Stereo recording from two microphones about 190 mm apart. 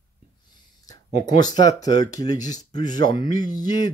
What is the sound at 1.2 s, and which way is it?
Speech, 20° left (ahead or behind).